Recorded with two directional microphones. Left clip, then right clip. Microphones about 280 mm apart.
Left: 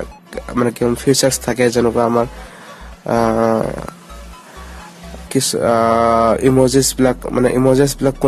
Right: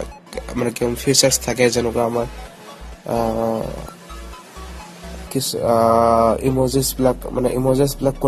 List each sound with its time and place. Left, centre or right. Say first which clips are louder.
0.3 s speech: left 5 dB; centre
5.3 s speech: left 3 dB; centre